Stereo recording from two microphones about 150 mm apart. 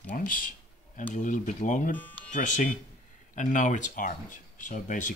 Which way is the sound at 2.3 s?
55° left (ahead or behind).